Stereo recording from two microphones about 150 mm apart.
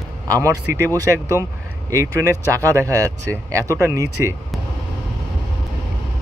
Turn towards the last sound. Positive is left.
turn(degrees=-20)  # may be behind; listen again after turning